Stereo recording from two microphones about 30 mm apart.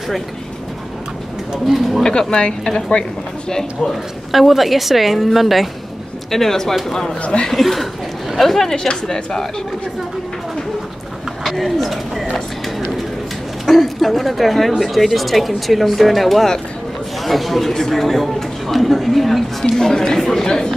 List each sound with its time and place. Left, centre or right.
1.7 s speech: centre
3.0 s a man's voice: left
4.3 s speech: centre
6.3 s speech: centre
7.2 s speech: left
7.4 s speech: centre
9.0 s a man's voice: left
11.4 s speech: centre
13.7 s a man's voice: centre
17.7 s a man's voice: centre
18.0 s speech: centre
19.8 s a man's voice: left
20.1 s speech: centre
20.4 s a man's voice: left